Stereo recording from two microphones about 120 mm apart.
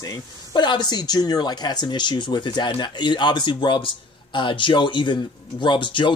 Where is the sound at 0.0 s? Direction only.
30° left (ahead or behind).